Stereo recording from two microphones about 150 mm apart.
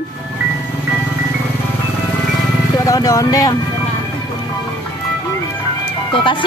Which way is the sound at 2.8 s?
25° left (ahead or behind).